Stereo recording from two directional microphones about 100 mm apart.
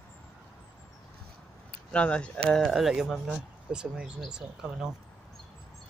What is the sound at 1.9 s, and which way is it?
Speech, 10° left (ahead or behind).